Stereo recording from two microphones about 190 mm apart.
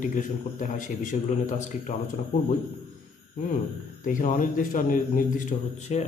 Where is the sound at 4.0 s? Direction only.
45° left (ahead or behind).